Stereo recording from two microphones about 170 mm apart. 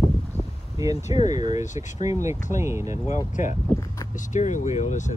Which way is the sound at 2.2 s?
15° right (ahead or behind).